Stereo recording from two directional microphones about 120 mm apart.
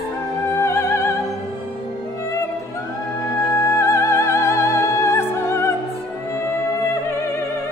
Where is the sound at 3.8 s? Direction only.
25° left (ahead or behind).